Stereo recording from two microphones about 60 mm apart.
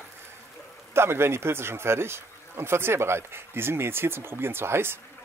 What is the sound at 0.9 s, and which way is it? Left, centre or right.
Speech, right.